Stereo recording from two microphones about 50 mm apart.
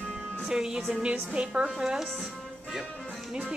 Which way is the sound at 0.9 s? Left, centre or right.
Right.